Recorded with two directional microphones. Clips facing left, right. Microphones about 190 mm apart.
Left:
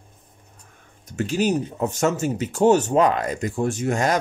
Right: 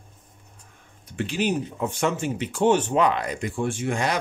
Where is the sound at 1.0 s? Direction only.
45° left (ahead or behind).